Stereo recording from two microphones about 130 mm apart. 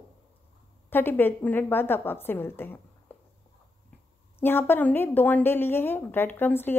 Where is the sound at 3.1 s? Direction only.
10° left (ahead or behind).